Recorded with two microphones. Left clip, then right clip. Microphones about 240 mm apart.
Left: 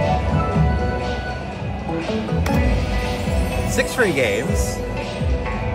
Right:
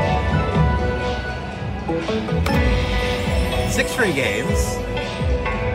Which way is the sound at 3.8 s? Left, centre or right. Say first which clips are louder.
Left 2 dB; centre.